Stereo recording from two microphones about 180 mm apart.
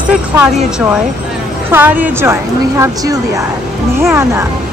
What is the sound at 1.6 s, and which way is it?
A woman's voice, 10° right (ahead or behind).